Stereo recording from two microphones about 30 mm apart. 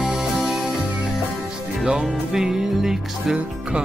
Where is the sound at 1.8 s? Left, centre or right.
Right.